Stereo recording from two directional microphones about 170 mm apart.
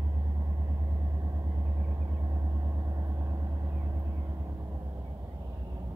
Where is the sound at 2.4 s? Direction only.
20° right (ahead or behind).